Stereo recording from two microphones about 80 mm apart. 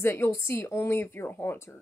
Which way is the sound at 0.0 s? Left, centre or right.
Left.